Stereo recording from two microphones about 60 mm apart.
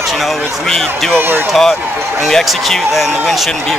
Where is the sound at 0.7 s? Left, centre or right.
Centre.